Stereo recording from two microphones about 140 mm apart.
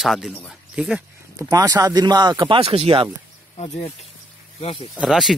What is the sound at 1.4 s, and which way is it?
Speech, 30° right (ahead or behind).